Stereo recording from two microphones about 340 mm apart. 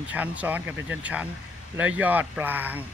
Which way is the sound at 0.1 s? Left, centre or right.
Centre.